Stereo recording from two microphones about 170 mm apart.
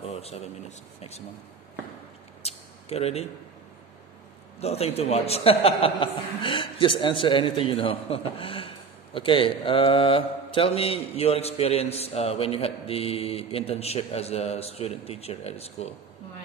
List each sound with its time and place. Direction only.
0.0 s a man's voice: 35° left (ahead or behind)
2.4 s a sound: 35° left (ahead or behind)
4.6 s a man's voice: 35° left (ahead or behind)